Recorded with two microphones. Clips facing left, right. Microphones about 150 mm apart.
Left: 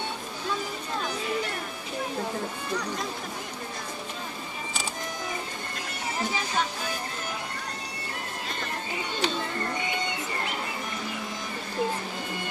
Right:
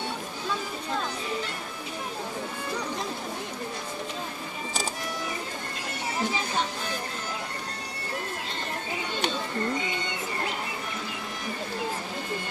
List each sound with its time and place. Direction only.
9.2 s music: 60° right (ahead or behind)